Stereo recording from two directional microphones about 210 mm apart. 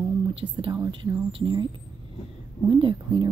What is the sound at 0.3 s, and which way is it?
Speech, 25° right (ahead or behind).